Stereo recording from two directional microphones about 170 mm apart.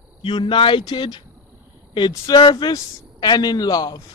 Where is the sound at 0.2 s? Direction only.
30° left (ahead or behind).